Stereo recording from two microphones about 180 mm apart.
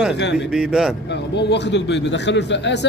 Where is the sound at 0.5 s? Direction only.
Centre (ahead or behind).